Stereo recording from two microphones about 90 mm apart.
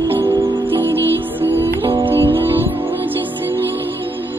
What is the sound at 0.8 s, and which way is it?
Music, 25° left (ahead or behind).